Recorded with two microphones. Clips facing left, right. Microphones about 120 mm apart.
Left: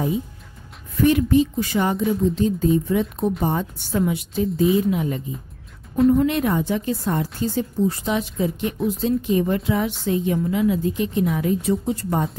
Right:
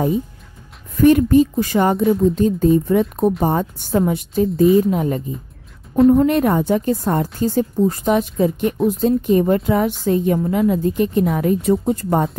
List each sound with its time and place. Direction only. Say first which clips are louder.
1.0 s speech: right 5 dB; 45° right (ahead or behind)